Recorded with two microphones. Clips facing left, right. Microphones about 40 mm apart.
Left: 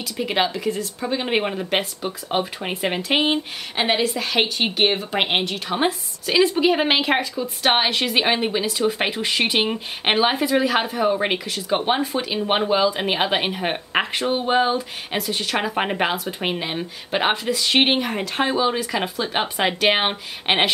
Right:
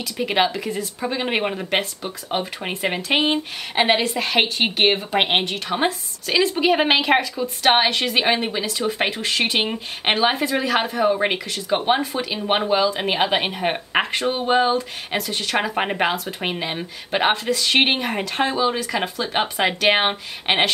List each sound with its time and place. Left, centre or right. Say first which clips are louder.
0.2 s a woman's voice: right 1 dB; centre
3.7 s a woman's voice: right 2 dB; centre
5.7 s speech: left 2 dB; centre
6.5 s a woman's voice: right 1 dB; centre
17.3 s speech: right 1 dB; centre
17.8 s a woman's voice: even; centre